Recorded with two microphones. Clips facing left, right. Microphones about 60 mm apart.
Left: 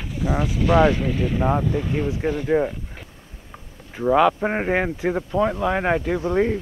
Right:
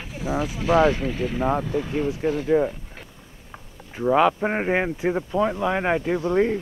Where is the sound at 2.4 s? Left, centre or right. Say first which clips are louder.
Even; centre.